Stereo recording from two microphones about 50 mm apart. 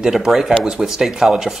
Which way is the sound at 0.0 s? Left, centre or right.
Centre.